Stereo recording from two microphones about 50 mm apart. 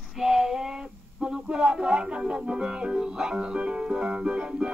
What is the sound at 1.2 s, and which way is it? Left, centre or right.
Music, centre.